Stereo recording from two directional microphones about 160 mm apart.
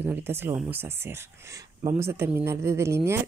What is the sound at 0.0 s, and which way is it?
Speech, 10° right (ahead or behind).